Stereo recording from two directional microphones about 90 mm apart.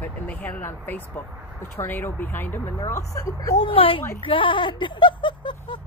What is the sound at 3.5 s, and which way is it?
Speech, 90° left.